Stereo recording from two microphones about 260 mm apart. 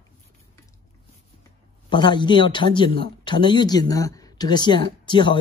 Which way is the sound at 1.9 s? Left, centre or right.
Centre.